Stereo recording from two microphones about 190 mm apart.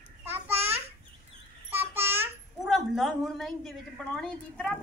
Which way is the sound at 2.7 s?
Centre (ahead or behind).